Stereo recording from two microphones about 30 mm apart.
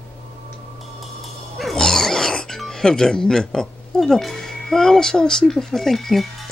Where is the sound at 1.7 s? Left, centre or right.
Centre.